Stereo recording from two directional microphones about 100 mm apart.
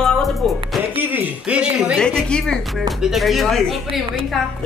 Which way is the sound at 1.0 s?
15° right (ahead or behind).